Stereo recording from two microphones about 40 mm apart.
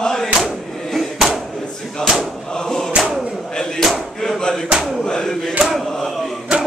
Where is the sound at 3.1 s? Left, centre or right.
Centre.